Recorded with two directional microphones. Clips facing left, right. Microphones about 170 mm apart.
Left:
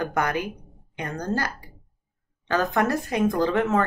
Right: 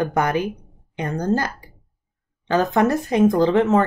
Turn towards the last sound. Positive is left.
turn(degrees=-25)  # may be behind; listen again after turning